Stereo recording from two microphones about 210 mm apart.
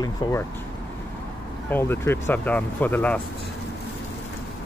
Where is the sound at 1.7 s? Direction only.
10° left (ahead or behind).